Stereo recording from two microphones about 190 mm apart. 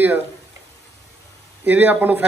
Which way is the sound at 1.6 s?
10° right (ahead or behind).